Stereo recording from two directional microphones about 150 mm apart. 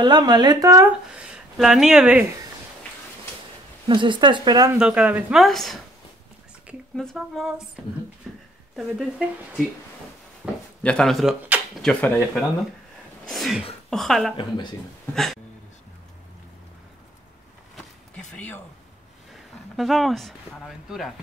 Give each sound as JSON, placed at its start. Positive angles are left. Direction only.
{"t": 0.0, "sound": "speech", "side_deg": -30}
{"t": 1.1, "sound": "speech", "side_deg": -5}
{"t": 3.8, "sound": "speech", "side_deg": -35}
{"t": 4.7, "sound": "speech", "side_deg": -5}
{"t": 7.0, "sound": "speech", "side_deg": 0}
{"t": 8.3, "sound": "a sound", "side_deg": 0}
{"t": 8.7, "sound": "speech", "side_deg": 0}
{"t": 10.4, "sound": "speech", "side_deg": -10}
{"t": 10.8, "sound": "speech", "side_deg": 5}
{"t": 11.8, "sound": "speech", "side_deg": 5}
{"t": 13.2, "sound": "speech", "side_deg": 0}
{"t": 18.1, "sound": "speech", "side_deg": 10}
{"t": 19.8, "sound": "speech", "side_deg": 0}